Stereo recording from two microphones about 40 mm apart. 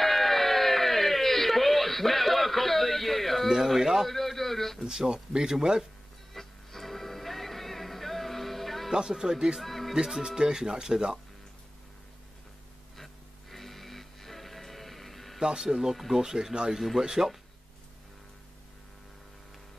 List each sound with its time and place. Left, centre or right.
0.0 s a sound: centre
3.4 s speech: centre
4.1 s a sound: centre
4.8 s speech: right
6.3 s music: centre
8.9 s speech: centre
9.6 s speech: centre
10.0 s speech: centre
12.9 s music: centre
15.4 s speech: centre